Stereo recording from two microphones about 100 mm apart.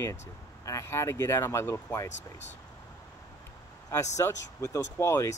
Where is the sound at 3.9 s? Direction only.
30° left (ahead or behind).